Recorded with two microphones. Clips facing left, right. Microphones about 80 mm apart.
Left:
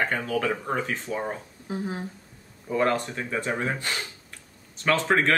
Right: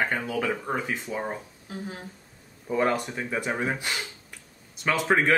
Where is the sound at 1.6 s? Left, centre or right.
Left.